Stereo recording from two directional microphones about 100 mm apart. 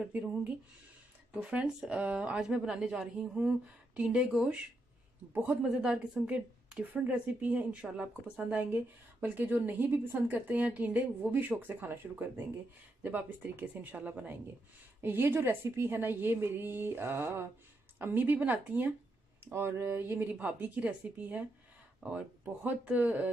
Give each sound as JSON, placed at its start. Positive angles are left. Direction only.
{"t": 0.0, "sound": "a woman's voice", "side_deg": -15}